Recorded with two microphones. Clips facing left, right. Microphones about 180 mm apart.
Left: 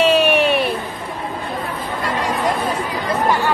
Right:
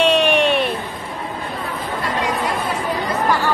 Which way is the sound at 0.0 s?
5° left (ahead or behind).